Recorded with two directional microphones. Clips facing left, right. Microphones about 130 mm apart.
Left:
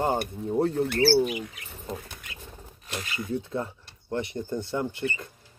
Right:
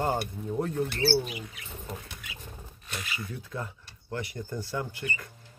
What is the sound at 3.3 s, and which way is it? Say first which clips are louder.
Speech: left 8 dB; 25° left (ahead or behind).